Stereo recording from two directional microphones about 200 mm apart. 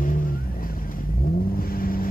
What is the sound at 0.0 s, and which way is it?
Vehicle, 45° left (ahead or behind).